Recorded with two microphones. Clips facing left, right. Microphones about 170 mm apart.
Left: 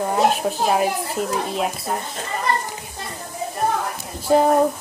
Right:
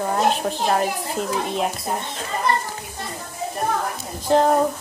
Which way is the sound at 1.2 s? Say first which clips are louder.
Even; 40° left (ahead or behind).